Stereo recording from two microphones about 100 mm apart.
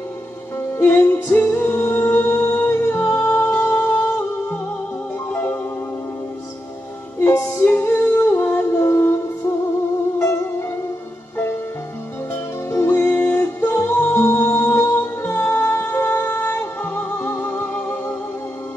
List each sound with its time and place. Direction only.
0.7 s music: 25° left (ahead or behind)
7.2 s music: 20° left (ahead or behind)
12.6 s music: 25° left (ahead or behind)